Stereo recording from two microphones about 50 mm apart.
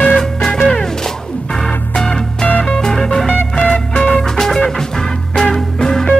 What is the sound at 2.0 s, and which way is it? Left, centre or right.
Music, centre.